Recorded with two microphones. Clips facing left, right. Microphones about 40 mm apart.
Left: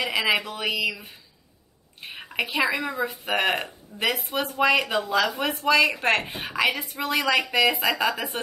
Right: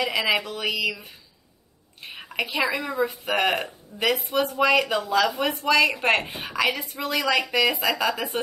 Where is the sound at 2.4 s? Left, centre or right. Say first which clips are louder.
Left 1 dB; centre.